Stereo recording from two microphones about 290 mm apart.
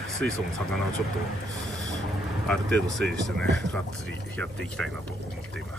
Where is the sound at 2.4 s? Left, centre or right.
Centre.